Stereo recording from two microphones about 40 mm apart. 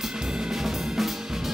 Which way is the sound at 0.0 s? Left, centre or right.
Centre.